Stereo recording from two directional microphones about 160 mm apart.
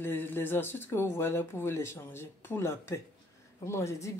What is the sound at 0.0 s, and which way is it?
Speech, 15° left (ahead or behind).